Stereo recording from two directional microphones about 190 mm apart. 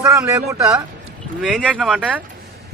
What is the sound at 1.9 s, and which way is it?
Speech, 5° right (ahead or behind).